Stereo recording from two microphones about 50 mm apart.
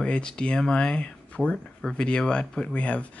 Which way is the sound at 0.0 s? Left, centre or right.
Centre.